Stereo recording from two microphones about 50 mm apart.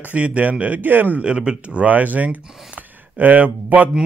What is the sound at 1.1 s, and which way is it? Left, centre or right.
Speech, centre.